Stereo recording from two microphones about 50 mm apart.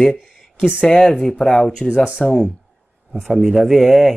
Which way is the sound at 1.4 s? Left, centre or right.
Centre.